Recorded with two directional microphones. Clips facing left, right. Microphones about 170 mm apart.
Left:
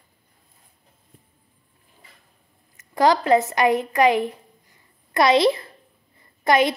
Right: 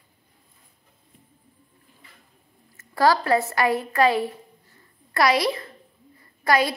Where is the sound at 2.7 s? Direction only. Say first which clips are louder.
Left 2 dB; 20° left (ahead or behind).